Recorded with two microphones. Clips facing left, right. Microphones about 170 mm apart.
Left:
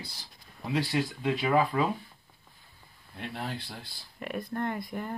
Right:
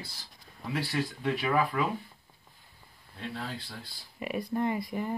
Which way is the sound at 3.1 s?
65° left (ahead or behind).